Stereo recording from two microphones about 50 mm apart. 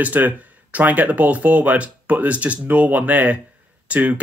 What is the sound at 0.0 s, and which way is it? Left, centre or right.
Speech, right.